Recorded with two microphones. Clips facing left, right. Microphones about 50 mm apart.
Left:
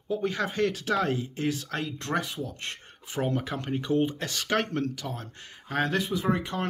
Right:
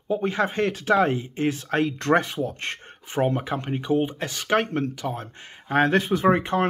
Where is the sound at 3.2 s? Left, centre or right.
Right.